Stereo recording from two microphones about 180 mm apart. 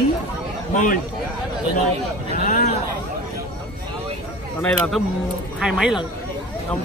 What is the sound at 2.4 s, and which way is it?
Speech, 45° left (ahead or behind).